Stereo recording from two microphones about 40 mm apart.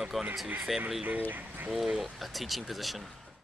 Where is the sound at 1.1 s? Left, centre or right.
Right.